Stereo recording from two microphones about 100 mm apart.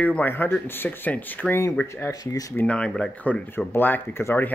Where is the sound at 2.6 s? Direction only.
10° left (ahead or behind).